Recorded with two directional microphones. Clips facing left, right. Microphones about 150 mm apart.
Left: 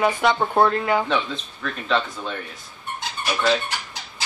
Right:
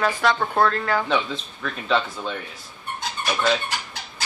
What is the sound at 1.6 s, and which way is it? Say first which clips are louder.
Speech: even; centre (ahead or behind).